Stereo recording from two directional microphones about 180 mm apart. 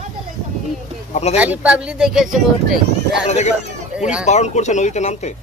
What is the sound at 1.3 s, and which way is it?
Speech, 10° right (ahead or behind).